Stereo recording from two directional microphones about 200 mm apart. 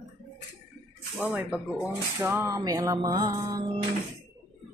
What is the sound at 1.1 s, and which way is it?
Speech, 5° right (ahead or behind).